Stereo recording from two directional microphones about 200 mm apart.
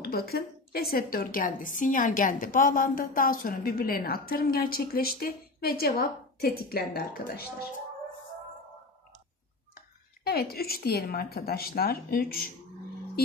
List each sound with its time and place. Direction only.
0.0 s a woman's voice: 50° left (ahead or behind)
10.2 s a woman's voice: 50° left (ahead or behind)